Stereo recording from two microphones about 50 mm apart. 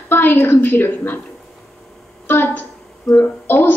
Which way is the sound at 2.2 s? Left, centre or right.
Left.